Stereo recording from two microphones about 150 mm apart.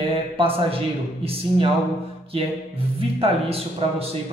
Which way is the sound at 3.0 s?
40° right (ahead or behind).